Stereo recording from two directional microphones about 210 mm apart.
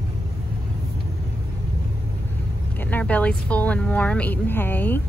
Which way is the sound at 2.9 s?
5° left (ahead or behind).